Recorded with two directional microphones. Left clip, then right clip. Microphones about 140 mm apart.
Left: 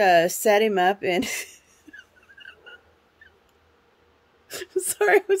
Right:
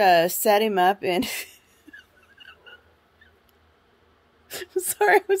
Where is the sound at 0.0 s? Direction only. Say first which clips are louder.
Even; 20° left (ahead or behind).